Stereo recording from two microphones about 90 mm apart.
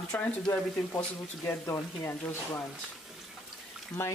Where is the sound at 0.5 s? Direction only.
15° left (ahead or behind).